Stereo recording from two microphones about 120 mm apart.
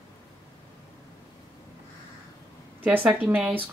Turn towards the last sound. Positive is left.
turn(degrees=-15)  # may be behind; listen again after turning